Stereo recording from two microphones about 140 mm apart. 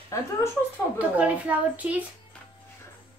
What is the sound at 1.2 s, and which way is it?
Speech, 10° right (ahead or behind).